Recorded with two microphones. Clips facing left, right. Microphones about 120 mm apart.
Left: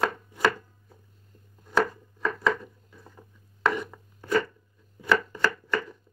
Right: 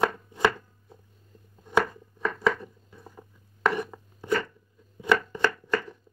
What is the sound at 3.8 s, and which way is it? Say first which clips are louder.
Chopping: right 3 dB; 20° right (ahead or behind).